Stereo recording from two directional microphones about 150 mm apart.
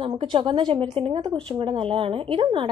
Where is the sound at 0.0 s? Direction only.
35° right (ahead or behind).